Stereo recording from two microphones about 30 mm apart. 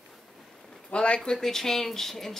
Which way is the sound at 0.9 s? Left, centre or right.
Left.